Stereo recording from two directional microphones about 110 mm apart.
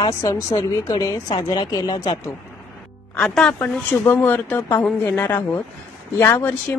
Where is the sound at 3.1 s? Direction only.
10° left (ahead or behind).